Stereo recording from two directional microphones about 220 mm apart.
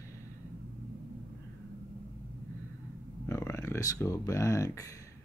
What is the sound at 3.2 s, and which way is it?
Speech, 10° left (ahead or behind).